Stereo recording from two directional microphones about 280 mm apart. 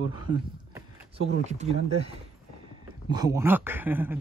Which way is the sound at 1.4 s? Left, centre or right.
Right.